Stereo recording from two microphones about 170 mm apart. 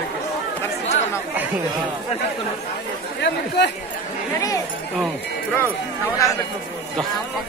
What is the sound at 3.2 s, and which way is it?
Speech, 80° left.